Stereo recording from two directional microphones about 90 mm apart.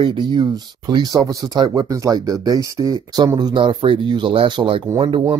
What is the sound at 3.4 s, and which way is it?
Speech, 60° right (ahead or behind).